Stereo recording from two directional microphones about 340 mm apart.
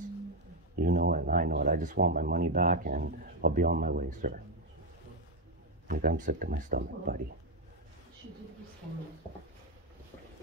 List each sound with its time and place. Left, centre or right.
0.7 s speech: right
5.9 s speech: right